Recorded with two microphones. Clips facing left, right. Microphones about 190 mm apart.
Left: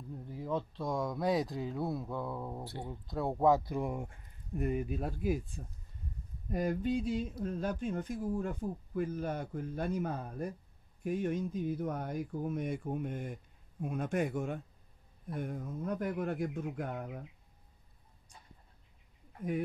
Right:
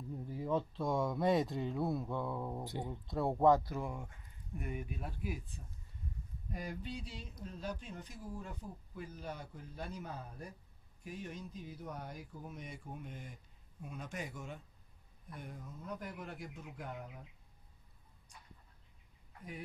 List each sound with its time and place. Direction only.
0.2 s speech: centre (ahead or behind)
2.6 s speech: 15° right (ahead or behind)
2.9 s speech: centre (ahead or behind); by 4.1 s 15° left (ahead or behind)
4.6 s speech: 40° left (ahead or behind)
6.5 s speech: 50° left (ahead or behind)